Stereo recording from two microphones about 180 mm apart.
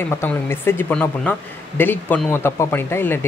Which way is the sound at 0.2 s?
10° left (ahead or behind).